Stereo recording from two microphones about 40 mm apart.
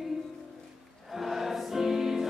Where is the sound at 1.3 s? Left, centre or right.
Centre.